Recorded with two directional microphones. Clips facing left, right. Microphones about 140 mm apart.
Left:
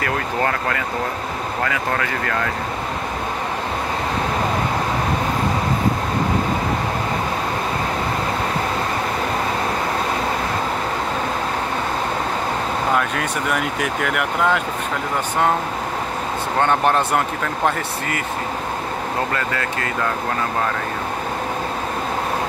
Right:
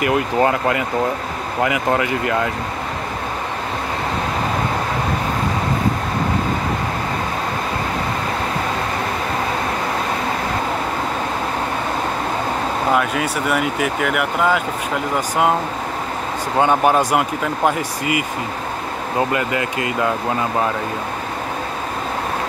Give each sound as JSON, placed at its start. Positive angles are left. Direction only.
{"t": 0.0, "sound": "speech", "side_deg": -15}
{"t": 12.9, "sound": "speech", "side_deg": -5}
{"t": 16.5, "sound": "speech", "side_deg": -10}
{"t": 19.3, "sound": "speech", "side_deg": -15}